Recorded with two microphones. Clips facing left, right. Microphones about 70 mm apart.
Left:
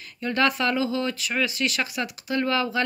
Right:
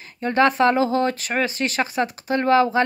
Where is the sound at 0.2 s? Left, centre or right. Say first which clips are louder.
Right 6 dB; right.